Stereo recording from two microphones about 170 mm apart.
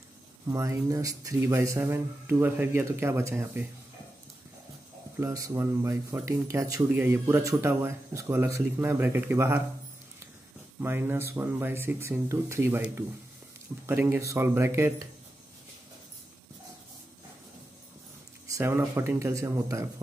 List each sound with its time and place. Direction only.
0.5 s speech: 20° right (ahead or behind)
5.2 s speech: 20° right (ahead or behind)
10.8 s speech: 15° right (ahead or behind)
18.5 s speech: 15° right (ahead or behind)